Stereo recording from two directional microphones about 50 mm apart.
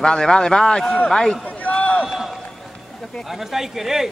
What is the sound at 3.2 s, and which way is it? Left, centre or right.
Speech, centre.